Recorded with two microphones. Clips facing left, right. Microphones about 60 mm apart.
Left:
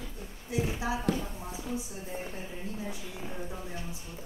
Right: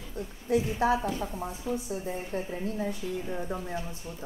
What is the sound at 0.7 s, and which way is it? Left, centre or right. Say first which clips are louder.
A woman's voice: right 5 dB; right.